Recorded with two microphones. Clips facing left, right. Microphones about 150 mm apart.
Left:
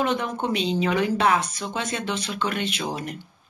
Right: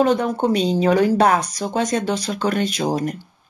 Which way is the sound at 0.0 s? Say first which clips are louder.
Right 7 dB; 35° right (ahead or behind).